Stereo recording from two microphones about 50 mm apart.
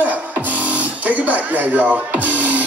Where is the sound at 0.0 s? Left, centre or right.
Right.